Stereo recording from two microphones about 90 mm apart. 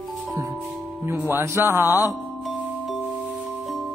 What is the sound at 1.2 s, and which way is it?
Speech, 30° right (ahead or behind).